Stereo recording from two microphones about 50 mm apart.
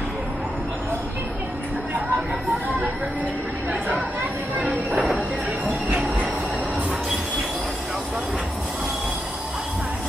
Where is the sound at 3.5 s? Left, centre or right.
Right.